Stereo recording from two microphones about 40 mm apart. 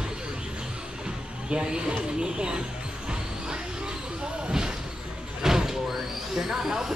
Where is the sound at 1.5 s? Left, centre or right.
Right.